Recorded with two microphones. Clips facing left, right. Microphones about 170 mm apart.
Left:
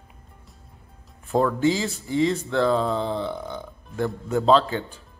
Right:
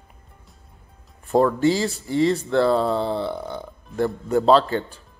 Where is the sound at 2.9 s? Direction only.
35° right (ahead or behind).